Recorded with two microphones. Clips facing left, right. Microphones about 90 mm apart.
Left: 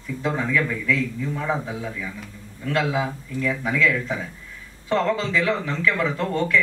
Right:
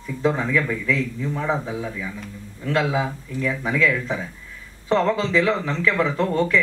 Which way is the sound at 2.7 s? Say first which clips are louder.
Right 1 dB; 25° right (ahead or behind).